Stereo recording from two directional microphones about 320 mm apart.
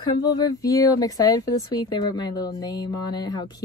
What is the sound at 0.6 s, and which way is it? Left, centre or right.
Speech, centre.